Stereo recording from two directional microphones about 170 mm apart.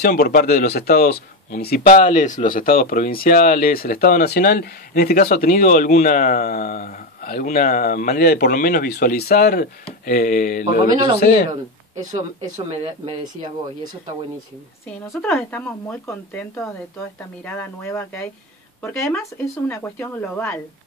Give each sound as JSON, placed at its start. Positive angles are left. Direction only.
{"t": 0.0, "sound": "speech", "side_deg": 55}
{"t": 12.0, "sound": "speech", "side_deg": -45}
{"t": 12.6, "sound": "speech", "side_deg": -30}
{"t": 14.9, "sound": "speech", "side_deg": 10}